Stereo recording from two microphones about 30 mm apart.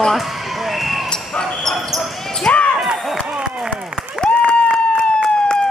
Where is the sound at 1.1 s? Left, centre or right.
Left.